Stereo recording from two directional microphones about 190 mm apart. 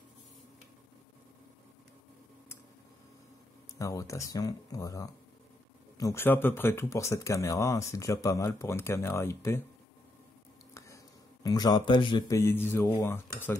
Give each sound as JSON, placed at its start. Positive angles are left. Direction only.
{"t": 3.7, "sound": "speech", "side_deg": 15}
{"t": 10.7, "sound": "a sound", "side_deg": 15}
{"t": 11.4, "sound": "speech", "side_deg": 20}